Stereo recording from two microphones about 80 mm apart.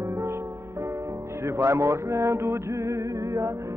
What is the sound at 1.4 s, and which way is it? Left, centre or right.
Music, right.